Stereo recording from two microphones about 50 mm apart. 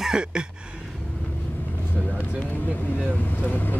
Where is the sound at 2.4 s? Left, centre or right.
Left.